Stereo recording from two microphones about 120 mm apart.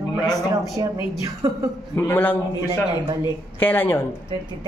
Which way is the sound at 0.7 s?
25° right (ahead or behind).